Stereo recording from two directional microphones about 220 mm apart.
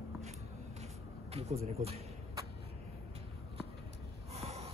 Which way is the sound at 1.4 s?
30° right (ahead or behind).